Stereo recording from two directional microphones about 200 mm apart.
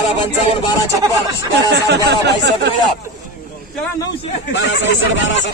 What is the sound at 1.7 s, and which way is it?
Speech, 60° right (ahead or behind).